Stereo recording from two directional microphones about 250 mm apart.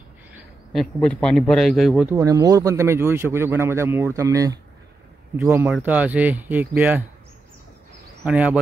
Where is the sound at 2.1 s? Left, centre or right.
Centre.